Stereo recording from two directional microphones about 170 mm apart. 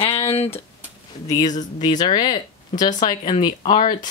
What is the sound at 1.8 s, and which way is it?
Speech, 25° left (ahead or behind).